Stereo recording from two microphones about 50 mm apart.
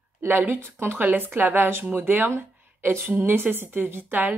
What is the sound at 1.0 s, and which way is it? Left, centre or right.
Speech, right.